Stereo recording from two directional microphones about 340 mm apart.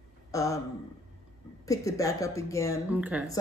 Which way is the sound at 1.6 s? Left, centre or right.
Centre.